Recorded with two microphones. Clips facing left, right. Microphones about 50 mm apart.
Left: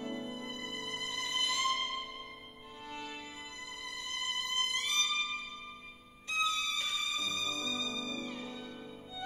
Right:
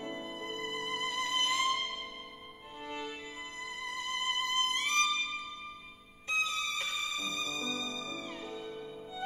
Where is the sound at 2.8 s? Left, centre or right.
Right.